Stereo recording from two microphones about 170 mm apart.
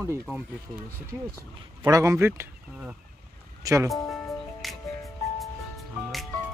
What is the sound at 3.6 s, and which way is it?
Speech, 20° right (ahead or behind).